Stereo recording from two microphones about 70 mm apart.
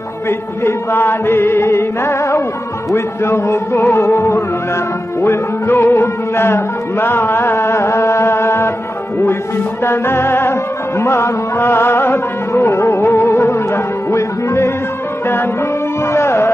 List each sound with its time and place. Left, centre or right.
0.3 s music: left
9.8 s music: left
14.1 s music: left
16.1 s tabla: left